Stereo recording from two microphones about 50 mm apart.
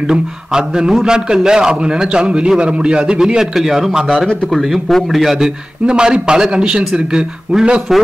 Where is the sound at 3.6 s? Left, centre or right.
Centre.